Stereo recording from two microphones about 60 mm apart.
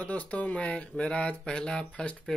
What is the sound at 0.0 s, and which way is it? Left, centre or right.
A man's voice, left.